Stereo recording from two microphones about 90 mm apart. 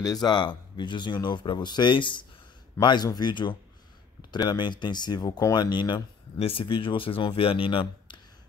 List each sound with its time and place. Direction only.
0.0 s speech: 45° left (ahead or behind); by 8.2 s 75° left (ahead or behind)